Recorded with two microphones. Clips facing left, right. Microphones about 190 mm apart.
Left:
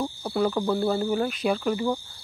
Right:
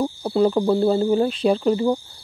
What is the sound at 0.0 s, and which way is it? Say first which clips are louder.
Speech: right 6 dB; 25° right (ahead or behind).